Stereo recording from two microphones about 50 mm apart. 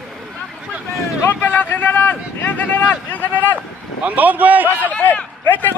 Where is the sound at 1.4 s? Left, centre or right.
Left.